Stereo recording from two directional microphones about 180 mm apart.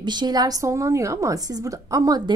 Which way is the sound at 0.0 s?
25° right (ahead or behind).